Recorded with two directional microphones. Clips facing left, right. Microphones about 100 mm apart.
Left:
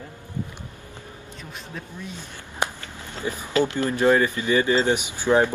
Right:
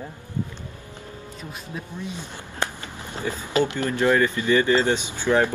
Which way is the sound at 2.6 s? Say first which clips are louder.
Left 1 dB; 15° left (ahead or behind).